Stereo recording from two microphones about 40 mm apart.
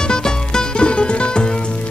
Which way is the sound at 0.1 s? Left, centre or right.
Centre.